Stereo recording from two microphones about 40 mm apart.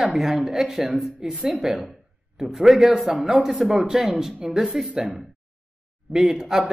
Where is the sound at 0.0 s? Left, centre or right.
Centre.